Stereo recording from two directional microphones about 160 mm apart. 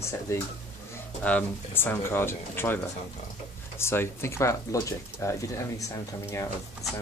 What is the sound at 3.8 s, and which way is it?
Speech, 15° left (ahead or behind).